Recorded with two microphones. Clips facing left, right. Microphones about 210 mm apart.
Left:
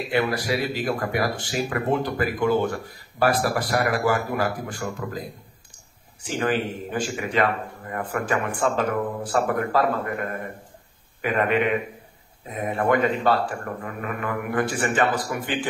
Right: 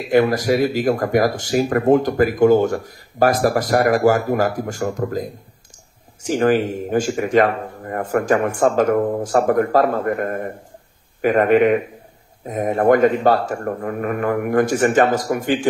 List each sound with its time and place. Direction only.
0.1 s speech: 45° right (ahead or behind)